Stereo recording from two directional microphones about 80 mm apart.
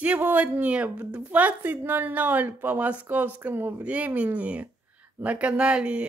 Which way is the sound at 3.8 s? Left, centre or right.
Centre.